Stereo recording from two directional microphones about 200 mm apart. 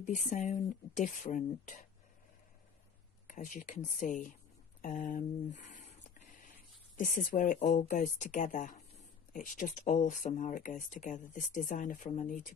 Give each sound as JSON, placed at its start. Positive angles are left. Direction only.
{"t": 0.0, "sound": "speech", "side_deg": 40}
{"t": 3.3, "sound": "speech", "side_deg": 40}